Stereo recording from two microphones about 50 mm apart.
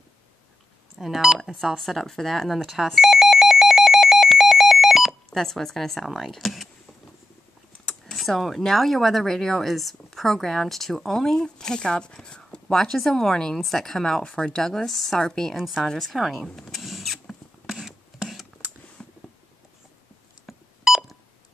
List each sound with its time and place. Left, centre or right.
0.9 s speech: centre
1.8 s speech: centre
2.6 s telephone bell ringing: centre
6.3 s speech: centre
7.8 s speech: centre
16.6 s vehicle: centre
17.6 s a sound: centre
19.0 s a sound: centre
20.4 s beep: centre